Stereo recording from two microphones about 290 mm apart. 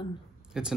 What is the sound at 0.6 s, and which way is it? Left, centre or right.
Speech, centre.